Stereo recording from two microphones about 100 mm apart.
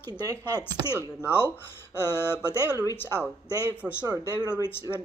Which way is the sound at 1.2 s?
25° left (ahead or behind).